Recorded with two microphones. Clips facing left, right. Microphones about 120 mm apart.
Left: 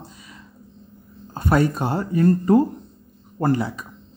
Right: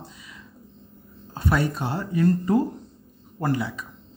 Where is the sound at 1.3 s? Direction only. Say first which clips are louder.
Left 5 dB; 45° left (ahead or behind).